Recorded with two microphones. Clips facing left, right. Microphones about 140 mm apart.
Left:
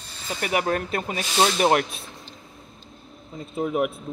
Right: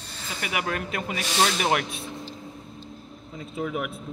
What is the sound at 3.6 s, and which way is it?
Speech, 40° left (ahead or behind).